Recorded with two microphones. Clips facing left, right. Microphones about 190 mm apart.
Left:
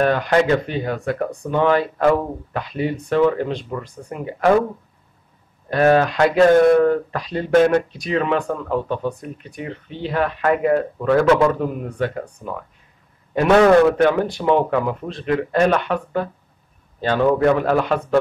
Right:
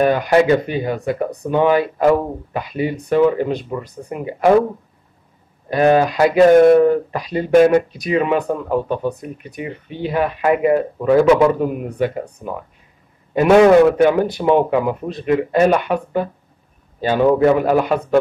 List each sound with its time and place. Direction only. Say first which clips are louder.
0.0 s speech: right 3 dB; 10° right (ahead or behind)
1.3 s a sound: right 3 dB; 20° right (ahead or behind)
1.6 s speech: right 2 dB; 10° right (ahead or behind)
5.7 s speech: right 1 dB; 5° right (ahead or behind)
6.5 s a sound: right 5 dB; 25° right (ahead or behind)
6.8 s speech: right 3 dB; 10° right (ahead or behind)
13.3 s speech: right 3 dB; 10° right (ahead or behind)